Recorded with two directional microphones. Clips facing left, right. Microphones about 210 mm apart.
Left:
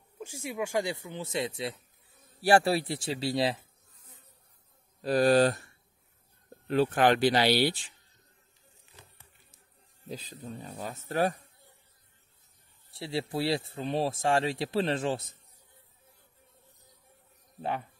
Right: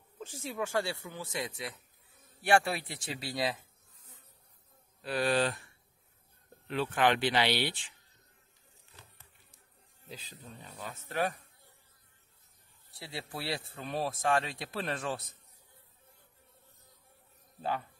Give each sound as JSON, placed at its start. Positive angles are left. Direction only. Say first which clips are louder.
{"t": 0.2, "sound": "speech", "louder": "left 2 dB", "side_deg": 10}
{"t": 5.0, "sound": "speech", "louder": "left 7 dB", "side_deg": 40}
{"t": 6.7, "sound": "speech", "louder": "left 5 dB", "side_deg": 40}
{"t": 10.0, "sound": "speech", "louder": "left 8 dB", "side_deg": 40}
{"t": 12.9, "sound": "speech", "louder": "left 10 dB", "side_deg": 25}
{"t": 17.6, "sound": "speech", "louder": "left 2 dB", "side_deg": 25}